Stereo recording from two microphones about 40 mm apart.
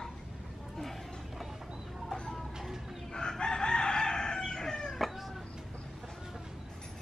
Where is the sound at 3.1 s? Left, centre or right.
Centre.